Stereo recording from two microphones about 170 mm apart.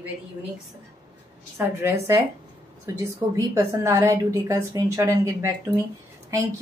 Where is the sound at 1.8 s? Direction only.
20° right (ahead or behind).